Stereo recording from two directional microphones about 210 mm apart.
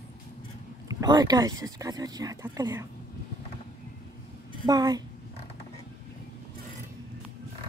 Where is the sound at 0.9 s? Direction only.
20° right (ahead or behind).